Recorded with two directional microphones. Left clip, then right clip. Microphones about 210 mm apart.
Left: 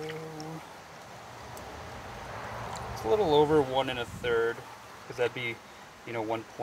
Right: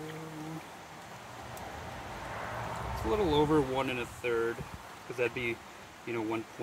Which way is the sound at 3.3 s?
50° left (ahead or behind).